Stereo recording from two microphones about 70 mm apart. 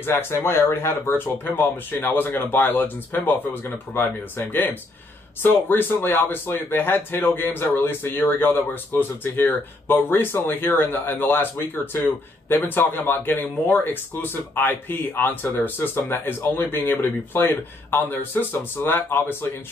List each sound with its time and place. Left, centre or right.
0.0 s speech: left